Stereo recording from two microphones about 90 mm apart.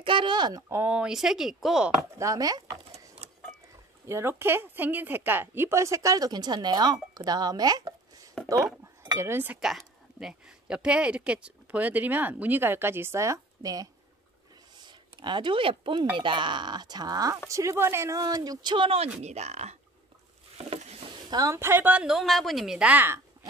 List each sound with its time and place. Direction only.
0.0 s speech: 65° right (ahead or behind)
0.7 s speech: 30° right (ahead or behind)
0.9 s a woman's voice: 5° right (ahead or behind)
2.1 s a woman's voice: 40° right (ahead or behind)
4.0 s a woman's voice: 30° right (ahead or behind); by 7.9 s 45° right (ahead or behind)
8.4 s a sound: 5° left (ahead or behind)
8.8 s cutlery: 40° right (ahead or behind)
9.3 s speech: 20° right (ahead or behind)
9.6 s speech: 5° right (ahead or behind); by 13.8 s 40° right (ahead or behind)
14.9 s speech: 60° right (ahead or behind)
20.5 s a sound: 90° right
21.3 s a woman's voice: 45° right (ahead or behind)
21.5 s speech: 25° right (ahead or behind)
22.0 s a woman's voice: centre (ahead or behind)